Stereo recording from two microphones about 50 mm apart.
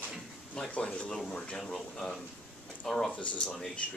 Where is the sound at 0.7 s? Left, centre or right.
Left.